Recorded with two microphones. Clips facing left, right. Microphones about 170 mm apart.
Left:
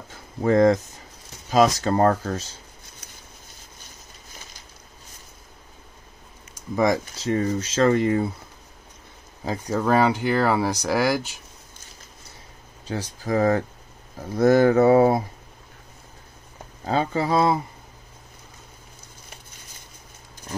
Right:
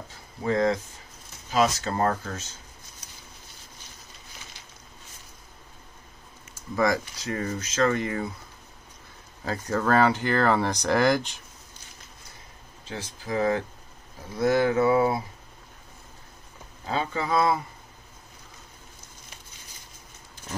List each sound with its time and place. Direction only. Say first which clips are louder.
0.4 s speech: left 7 dB; 50° left (ahead or behind)
1.5 s speech: left 5 dB; 40° left (ahead or behind)
6.7 s speech: left 3 dB; 20° left (ahead or behind)
9.4 s speech: left 2 dB; 15° left (ahead or behind)
12.8 s speech: left 7 dB; 40° left (ahead or behind)
16.8 s speech: left 5 dB; 35° left (ahead or behind)